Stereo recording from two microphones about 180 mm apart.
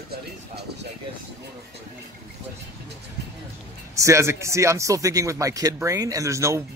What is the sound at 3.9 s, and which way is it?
Speech, 15° right (ahead or behind).